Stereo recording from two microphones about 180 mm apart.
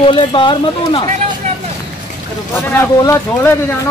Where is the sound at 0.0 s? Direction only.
25° left (ahead or behind).